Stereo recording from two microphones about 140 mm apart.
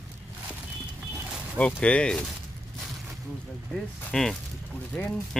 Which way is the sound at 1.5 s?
10° left (ahead or behind).